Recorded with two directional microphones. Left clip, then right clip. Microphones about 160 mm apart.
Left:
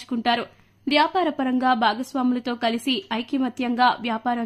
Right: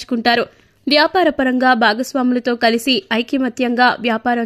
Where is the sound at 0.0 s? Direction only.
30° right (ahead or behind).